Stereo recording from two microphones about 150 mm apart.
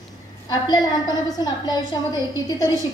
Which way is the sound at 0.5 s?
25° left (ahead or behind).